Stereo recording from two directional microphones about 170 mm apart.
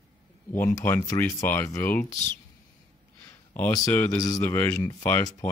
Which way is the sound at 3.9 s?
15° left (ahead or behind).